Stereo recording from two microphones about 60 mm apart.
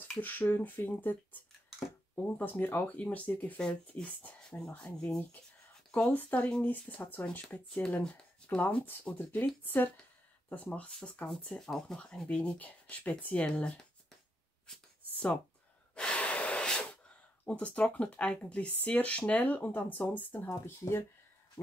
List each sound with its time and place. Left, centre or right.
0.2 s speech: left
4.5 s speech: centre
5.9 s a sound: centre
6.1 s speech: left
8.5 s speech: left
10.5 s speech: left
11.2 s speech: centre
14.7 s a sound: centre
15.9 s gasp: centre
17.5 s speech: centre
20.4 s speech: left